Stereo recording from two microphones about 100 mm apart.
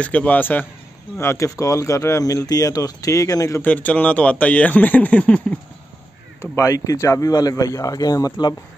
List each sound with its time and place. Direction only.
0.0 s speech: 15° left (ahead or behind); by 3.6 s 35° left (ahead or behind)
3.6 s speech: 15° left (ahead or behind)
6.5 s speech: 35° left (ahead or behind)